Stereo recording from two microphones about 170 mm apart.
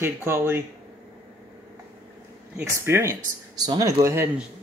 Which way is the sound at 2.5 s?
15° right (ahead or behind).